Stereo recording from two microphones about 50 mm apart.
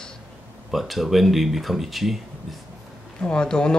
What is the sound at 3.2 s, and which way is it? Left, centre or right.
Speech, centre.